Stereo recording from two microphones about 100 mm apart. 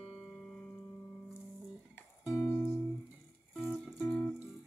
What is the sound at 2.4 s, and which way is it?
Music, 5° left (ahead or behind).